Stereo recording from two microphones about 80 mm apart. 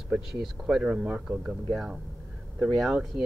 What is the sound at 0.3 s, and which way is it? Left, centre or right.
Speech, centre.